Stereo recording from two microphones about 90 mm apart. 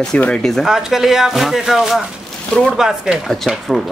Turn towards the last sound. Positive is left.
turn(degrees=0)  # may be behind; listen again after turning